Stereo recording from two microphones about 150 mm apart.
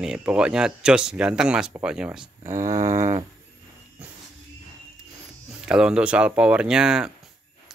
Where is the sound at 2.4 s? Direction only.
20° right (ahead or behind).